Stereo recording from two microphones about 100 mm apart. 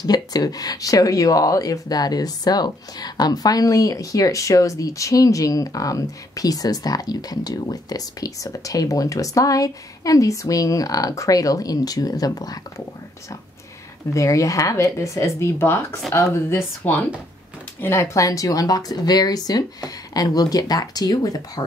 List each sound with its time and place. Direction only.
0.0 s speech: 40° left (ahead or behind)
14.1 s speech: 30° left (ahead or behind)